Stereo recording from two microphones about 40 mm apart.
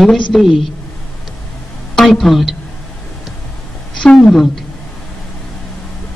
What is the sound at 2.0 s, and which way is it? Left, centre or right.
Speech, centre.